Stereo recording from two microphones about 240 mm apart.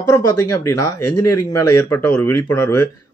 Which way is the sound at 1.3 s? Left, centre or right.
Left.